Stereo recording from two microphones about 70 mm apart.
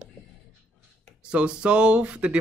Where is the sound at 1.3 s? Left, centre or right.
Centre.